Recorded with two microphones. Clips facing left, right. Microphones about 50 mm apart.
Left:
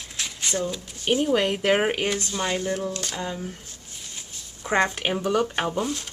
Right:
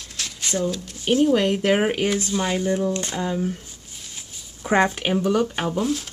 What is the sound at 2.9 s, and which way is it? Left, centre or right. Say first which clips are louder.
Speech: right 5 dB; right.